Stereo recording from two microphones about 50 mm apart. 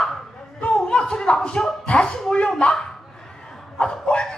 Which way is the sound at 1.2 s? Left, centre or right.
Centre.